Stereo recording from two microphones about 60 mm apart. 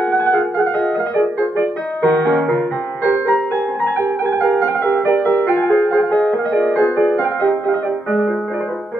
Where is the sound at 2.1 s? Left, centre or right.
Left.